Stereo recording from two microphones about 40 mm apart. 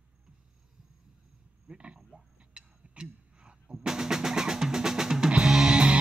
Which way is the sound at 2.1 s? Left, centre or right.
Right.